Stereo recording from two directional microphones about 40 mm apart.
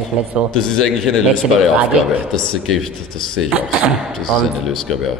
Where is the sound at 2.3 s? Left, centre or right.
Centre.